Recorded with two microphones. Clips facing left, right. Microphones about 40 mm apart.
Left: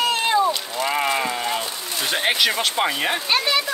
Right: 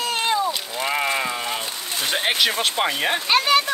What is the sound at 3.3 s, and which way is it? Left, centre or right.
Speech, right.